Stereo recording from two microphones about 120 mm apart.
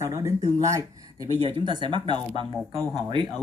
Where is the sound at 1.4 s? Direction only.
45° right (ahead or behind).